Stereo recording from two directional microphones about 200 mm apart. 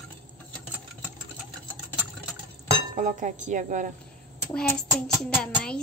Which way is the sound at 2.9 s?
40° right (ahead or behind).